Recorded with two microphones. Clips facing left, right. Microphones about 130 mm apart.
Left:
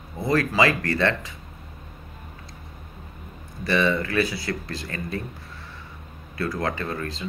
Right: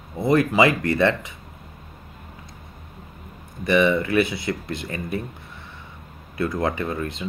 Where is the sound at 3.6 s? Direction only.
15° right (ahead or behind).